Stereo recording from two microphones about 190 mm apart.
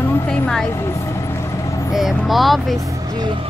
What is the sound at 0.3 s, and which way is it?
Vehicle, 5° left (ahead or behind).